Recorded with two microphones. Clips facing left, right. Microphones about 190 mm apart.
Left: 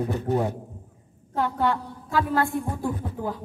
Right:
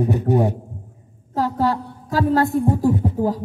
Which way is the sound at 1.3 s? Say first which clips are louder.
Right 4 dB; 35° right (ahead or behind).